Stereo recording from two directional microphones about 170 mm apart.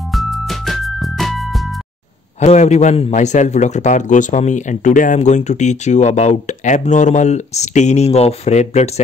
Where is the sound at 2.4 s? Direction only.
40° left (ahead or behind).